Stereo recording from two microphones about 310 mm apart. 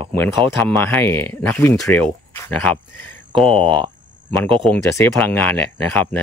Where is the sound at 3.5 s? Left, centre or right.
Centre.